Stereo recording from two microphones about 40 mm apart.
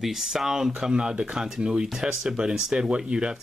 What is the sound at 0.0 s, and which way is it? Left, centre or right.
Speech, centre.